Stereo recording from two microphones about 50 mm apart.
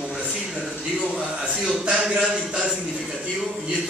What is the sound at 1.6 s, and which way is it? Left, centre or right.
Speech, centre.